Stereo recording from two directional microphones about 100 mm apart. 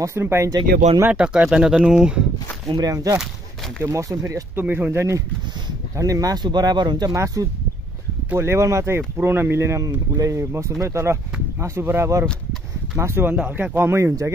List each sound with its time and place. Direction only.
0.0 s speech: 25° right (ahead or behind)
1.1 s speech: 10° right (ahead or behind)
2.7 s speech: 40° right (ahead or behind)
4.6 s speech: 15° right (ahead or behind); by 7.1 s 45° right (ahead or behind)
7.2 s speech: 35° right (ahead or behind)